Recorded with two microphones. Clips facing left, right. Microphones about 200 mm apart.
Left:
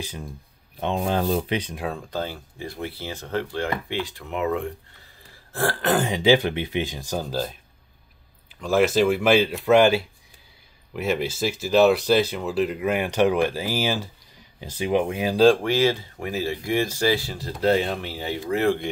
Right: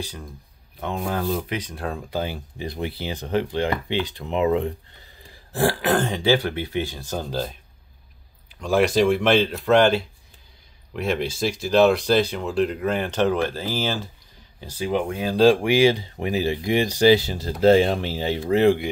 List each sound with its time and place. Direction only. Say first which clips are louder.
0.0 s speech: even; 20° left (ahead or behind)
2.0 s speech: right 2 dB; 10° right (ahead or behind)
5.9 s speech: left 4 dB; 10° left (ahead or behind)
7.2 s speech: even; centre (ahead or behind)
8.5 s speech: even; centre (ahead or behind)
15.3 s speech: right 1 dB; 5° right (ahead or behind); by 18.8 s 20° right (ahead or behind)